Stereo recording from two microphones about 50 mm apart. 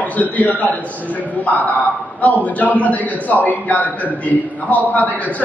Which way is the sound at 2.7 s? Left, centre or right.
Left.